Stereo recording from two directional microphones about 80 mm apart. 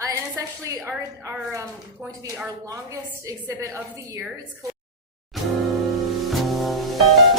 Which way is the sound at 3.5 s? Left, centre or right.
Right.